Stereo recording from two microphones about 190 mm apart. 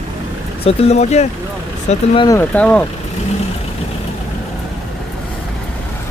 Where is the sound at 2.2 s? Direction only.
10° left (ahead or behind).